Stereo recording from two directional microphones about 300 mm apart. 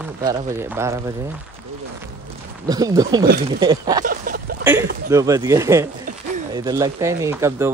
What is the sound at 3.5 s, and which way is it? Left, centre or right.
Speech, centre.